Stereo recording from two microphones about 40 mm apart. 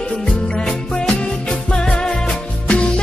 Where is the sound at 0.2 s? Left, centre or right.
Centre.